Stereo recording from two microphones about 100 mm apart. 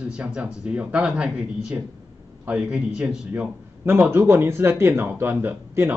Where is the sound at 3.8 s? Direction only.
25° right (ahead or behind).